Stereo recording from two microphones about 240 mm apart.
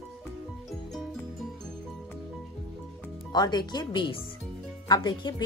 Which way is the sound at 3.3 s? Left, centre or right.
Centre.